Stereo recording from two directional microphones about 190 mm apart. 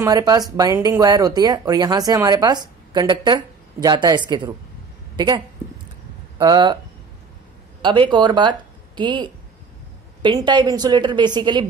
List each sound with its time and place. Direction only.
0.0 s speech: 20° right (ahead or behind)
7.8 s speech: 25° right (ahead or behind)